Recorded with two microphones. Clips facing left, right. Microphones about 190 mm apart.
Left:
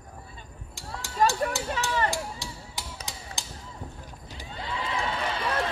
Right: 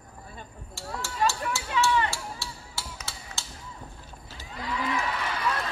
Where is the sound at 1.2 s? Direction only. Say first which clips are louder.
Left 4 dB; 40° left (ahead or behind).